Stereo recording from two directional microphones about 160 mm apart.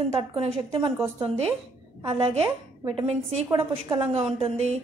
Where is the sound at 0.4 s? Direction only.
35° right (ahead or behind).